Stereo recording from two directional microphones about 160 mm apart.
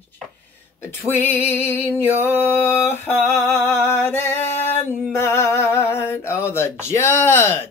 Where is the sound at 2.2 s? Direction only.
15° left (ahead or behind).